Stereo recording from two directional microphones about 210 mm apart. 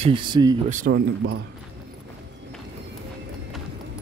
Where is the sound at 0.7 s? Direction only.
35° right (ahead or behind).